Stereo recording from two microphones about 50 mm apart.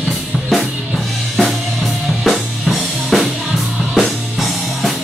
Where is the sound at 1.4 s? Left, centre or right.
Centre.